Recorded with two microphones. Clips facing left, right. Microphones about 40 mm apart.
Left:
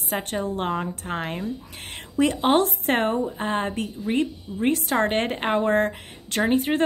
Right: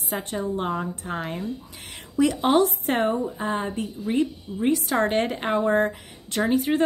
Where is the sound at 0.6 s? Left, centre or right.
Left.